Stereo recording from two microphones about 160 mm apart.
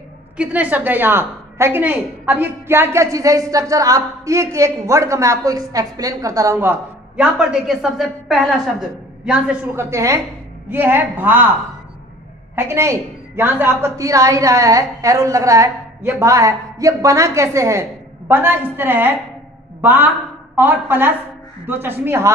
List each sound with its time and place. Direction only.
0.4 s a woman's voice: 10° right (ahead or behind)
12.5 s a woman's voice: 15° right (ahead or behind)